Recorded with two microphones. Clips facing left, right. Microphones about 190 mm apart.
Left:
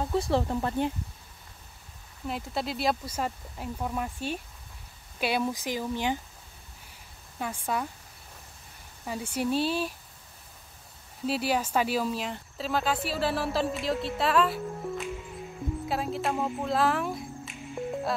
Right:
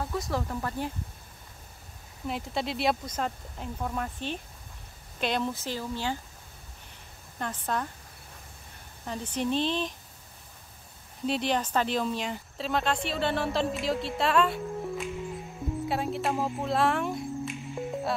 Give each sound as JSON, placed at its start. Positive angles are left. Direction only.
{"t": 0.0, "sound": "speech", "side_deg": 30}
{"t": 2.2, "sound": "speech", "side_deg": 0}
{"t": 7.3, "sound": "speech", "side_deg": 10}
{"t": 9.0, "sound": "speech", "side_deg": 10}
{"t": 11.2, "sound": "speech", "side_deg": 5}
{"t": 17.8, "sound": "music", "side_deg": -5}